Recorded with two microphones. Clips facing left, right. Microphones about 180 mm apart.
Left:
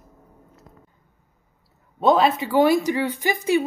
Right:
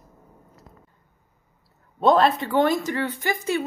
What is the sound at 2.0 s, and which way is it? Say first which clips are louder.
A woman's voice: even; centre (ahead or behind).